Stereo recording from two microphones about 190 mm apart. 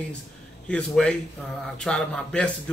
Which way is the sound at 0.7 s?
5° left (ahead or behind).